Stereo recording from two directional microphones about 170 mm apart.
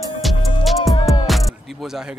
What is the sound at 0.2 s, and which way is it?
Music, centre (ahead or behind).